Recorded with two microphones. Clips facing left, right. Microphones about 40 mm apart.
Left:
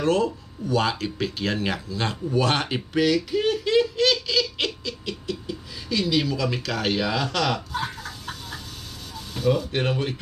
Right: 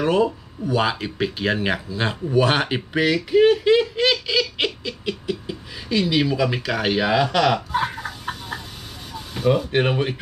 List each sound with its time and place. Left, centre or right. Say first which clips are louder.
0.0 s speech: right 3 dB; centre
3.3 s baby laughter: right 8 dB; right
7.1 s a sound: right 6 dB; right
9.1 s speech: right 3 dB; right